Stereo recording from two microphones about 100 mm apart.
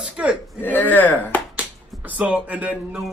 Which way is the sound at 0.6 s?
20° left (ahead or behind).